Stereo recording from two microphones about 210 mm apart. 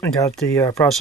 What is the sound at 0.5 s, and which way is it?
Speech, 15° left (ahead or behind).